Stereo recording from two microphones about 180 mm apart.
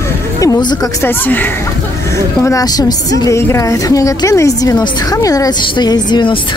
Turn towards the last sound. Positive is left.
turn(degrees=25)  # may be behind; listen again after turning